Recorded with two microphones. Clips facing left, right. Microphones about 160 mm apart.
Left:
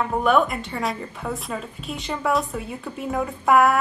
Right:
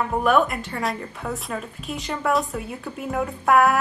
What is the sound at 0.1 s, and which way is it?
A woman's voice, centre (ahead or behind).